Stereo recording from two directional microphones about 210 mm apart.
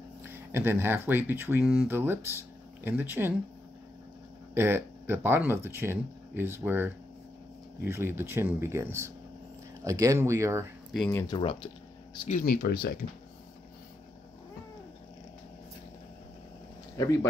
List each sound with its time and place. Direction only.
0.2 s speech: 10° right (ahead or behind)
4.6 s speech: 10° right (ahead or behind)
10.9 s speech: centre (ahead or behind)
11.1 s speech: 20° left (ahead or behind)
12.4 s speech: 45° left (ahead or behind)
16.9 s speech: 15° left (ahead or behind)